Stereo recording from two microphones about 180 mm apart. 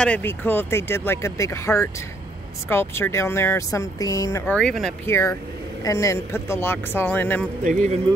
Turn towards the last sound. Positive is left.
turn(degrees=-40)  # may be behind; listen again after turning